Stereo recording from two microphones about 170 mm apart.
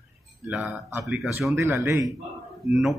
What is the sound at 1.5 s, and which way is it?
Speech, 15° right (ahead or behind).